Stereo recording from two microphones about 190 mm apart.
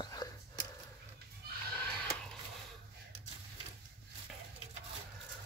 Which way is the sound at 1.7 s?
5° left (ahead or behind).